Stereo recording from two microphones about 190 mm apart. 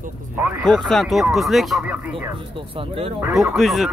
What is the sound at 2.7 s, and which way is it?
Speech, 30° right (ahead or behind).